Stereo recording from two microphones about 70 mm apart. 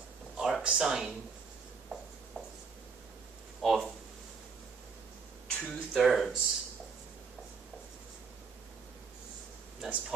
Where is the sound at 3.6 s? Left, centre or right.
Centre.